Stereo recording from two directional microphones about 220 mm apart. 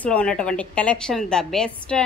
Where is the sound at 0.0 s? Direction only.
5° left (ahead or behind).